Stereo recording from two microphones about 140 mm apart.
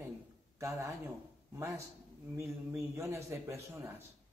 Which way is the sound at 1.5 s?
20° right (ahead or behind).